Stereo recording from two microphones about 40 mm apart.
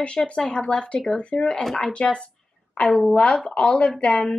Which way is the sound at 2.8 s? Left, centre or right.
Centre.